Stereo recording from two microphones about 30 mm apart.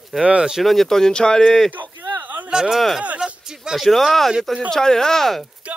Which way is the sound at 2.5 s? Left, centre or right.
Right.